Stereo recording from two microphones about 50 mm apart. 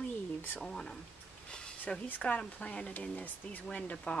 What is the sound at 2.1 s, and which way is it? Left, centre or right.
Speech, left.